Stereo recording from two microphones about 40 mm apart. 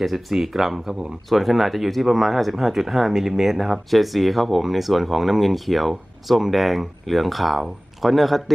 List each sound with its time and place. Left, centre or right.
0.0 s speech: centre